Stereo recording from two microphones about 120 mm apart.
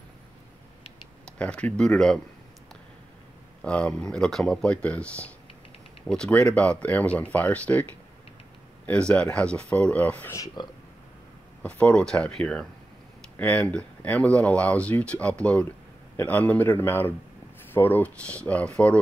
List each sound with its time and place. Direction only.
1.2 s speech: 10° left (ahead or behind)
3.6 s speech: 10° left (ahead or behind)
10.3 s speech: 35° left (ahead or behind)
11.6 s speech: 10° left (ahead or behind)